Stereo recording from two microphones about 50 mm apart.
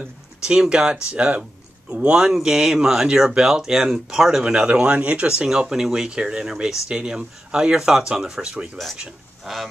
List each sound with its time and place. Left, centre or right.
0.4 s speech: centre
1.1 s speech: right
5.5 s speech: centre
9.4 s speech: centre